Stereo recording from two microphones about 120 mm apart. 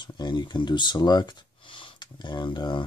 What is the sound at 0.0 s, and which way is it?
Speech, 40° left (ahead or behind).